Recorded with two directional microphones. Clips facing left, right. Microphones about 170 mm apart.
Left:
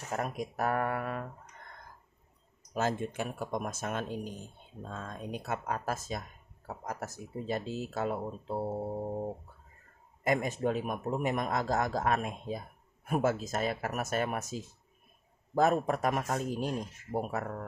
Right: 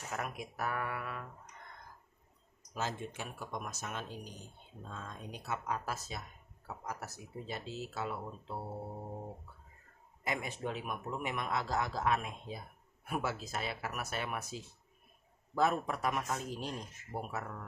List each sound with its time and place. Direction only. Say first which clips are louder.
0.1 s speech: left 7 dB; 40° left (ahead or behind)
2.7 s speech: left 7 dB; 50° left (ahead or behind)
10.2 s speech: left 8 dB; 45° left (ahead or behind)